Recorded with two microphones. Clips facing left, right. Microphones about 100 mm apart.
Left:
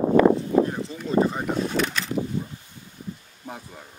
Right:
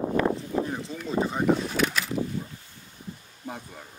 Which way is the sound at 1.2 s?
Centre (ahead or behind).